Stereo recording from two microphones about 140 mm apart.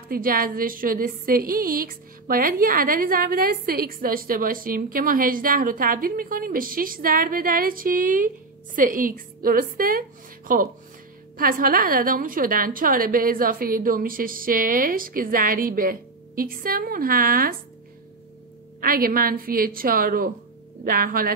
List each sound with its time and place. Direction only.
0.1 s a woman's voice: 90° right
18.8 s a woman's voice: 90° right